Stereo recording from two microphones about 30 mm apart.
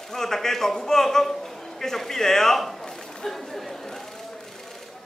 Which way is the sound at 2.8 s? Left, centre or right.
Centre.